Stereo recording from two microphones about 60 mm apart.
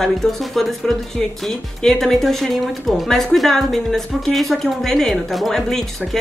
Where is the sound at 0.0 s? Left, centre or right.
Centre.